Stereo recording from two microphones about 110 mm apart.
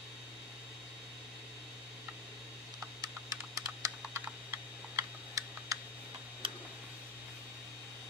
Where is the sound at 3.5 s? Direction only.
30° right (ahead or behind).